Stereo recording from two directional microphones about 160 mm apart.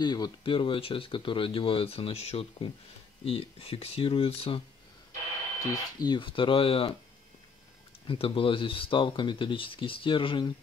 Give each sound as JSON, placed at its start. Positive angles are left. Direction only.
{"t": 0.0, "sound": "speech", "side_deg": 25}
{"t": 5.6, "sound": "speech", "side_deg": 25}
{"t": 8.1, "sound": "speech", "side_deg": 35}